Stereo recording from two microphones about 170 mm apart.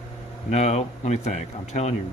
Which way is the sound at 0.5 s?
40° left (ahead or behind).